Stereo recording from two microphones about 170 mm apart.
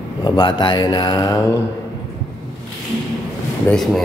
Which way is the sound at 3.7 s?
Centre (ahead or behind).